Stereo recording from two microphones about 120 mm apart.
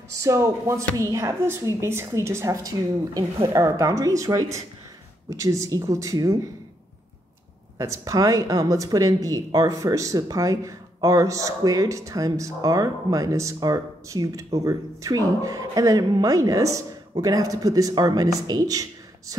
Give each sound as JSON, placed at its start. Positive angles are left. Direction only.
{"t": 0.1, "sound": "speech", "side_deg": -25}
{"t": 7.7, "sound": "speech", "side_deg": -30}